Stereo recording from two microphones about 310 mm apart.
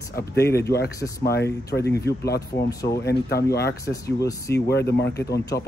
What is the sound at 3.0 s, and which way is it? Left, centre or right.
Speech, left.